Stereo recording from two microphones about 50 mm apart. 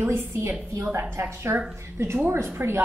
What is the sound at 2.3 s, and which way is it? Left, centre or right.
Speech, right.